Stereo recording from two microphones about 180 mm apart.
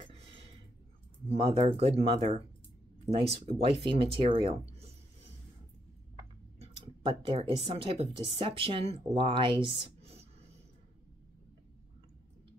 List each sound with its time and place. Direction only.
0.0 s a sound: 35° right (ahead or behind)
1.3 s speech: 35° right (ahead or behind)
6.6 s speech: 30° right (ahead or behind)